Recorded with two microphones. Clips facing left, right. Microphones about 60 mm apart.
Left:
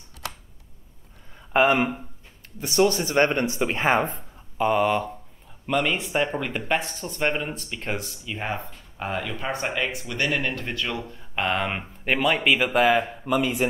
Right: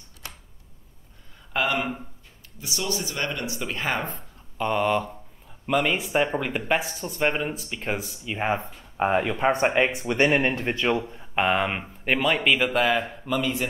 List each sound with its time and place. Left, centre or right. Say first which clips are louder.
0.2 s camera: left 7 dB; left
1.5 s speech: left 6 dB; left
2.6 s speech: left 9 dB; left
4.1 s speech: even; centre
8.4 s speech: right 5 dB; centre
9.0 s speech: right 7 dB; right; by 13.7 s centre